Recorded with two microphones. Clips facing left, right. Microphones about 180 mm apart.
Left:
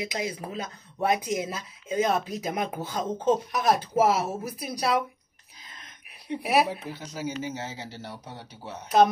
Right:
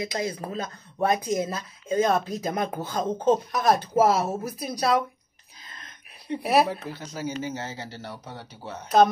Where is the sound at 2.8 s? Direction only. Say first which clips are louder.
Right 2 dB; 45° right (ahead or behind).